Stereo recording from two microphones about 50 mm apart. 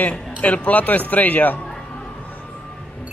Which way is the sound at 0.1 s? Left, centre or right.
Left.